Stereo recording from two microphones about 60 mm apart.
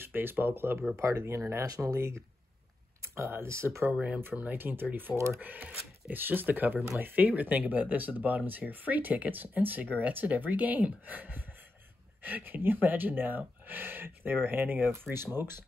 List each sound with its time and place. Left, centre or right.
0.0 s speech: right
1.3 s speech: right
3.4 s speech: right
3.9 s speech: centre
4.4 s speech: right
5.1 s speech: right
5.4 s speech: right
14.9 s speech: right